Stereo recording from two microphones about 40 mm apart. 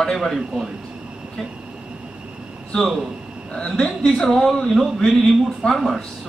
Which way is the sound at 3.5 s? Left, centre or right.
Left.